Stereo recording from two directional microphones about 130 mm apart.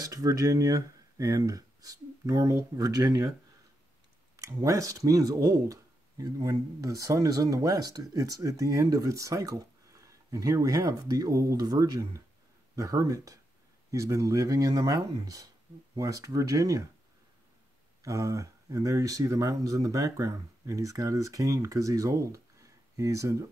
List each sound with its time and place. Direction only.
0.0 s speech: 30° right (ahead or behind)
4.4 s speech: 25° right (ahead or behind)
18.0 s speech: 25° right (ahead or behind)